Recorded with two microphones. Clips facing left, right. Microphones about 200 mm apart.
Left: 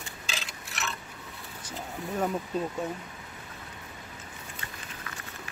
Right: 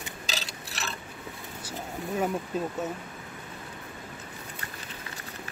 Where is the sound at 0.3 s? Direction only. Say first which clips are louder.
Right 2 dB; 35° right (ahead or behind).